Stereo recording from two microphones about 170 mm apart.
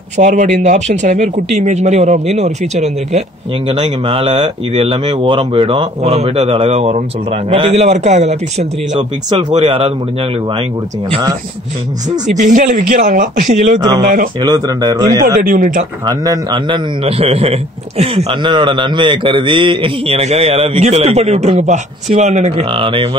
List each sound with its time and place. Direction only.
0.2 s a man's voice: 45° right (ahead or behind)
12.4 s speech: 50° right (ahead or behind)
13.7 s a man's voice: 25° right (ahead or behind)
14.0 s speech: 55° right (ahead or behind)
14.4 s a man's voice: 25° right (ahead or behind)
15.4 s speech: 55° right (ahead or behind)
16.1 s a man's voice: 25° right (ahead or behind)